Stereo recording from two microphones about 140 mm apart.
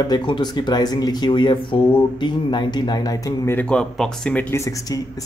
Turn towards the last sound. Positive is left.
turn(degrees=25)  # may be behind; listen again after turning